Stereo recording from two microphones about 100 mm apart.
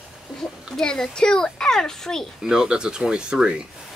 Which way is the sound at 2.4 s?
5° right (ahead or behind).